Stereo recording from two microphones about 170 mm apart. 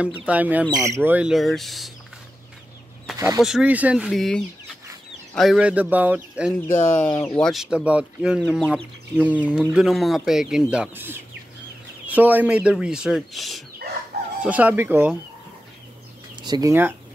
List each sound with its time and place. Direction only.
0.0 s speech: 5° right (ahead or behind)
3.3 s speech: 5° right (ahead or behind)
6.7 s speech: 10° left (ahead or behind)
7.3 s speech: centre (ahead or behind)
16.4 s speech: 25° right (ahead or behind)